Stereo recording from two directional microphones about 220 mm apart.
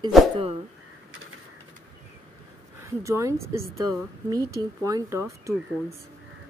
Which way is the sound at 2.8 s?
15° right (ahead or behind).